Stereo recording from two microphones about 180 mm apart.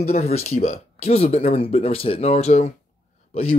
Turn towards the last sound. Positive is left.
turn(degrees=35)  # may be behind; listen again after turning